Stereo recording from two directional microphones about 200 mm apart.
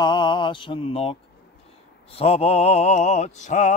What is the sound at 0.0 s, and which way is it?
Mantra, 25° left (ahead or behind).